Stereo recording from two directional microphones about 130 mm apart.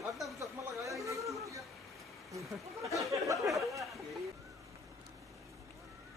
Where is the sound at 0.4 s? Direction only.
25° right (ahead or behind).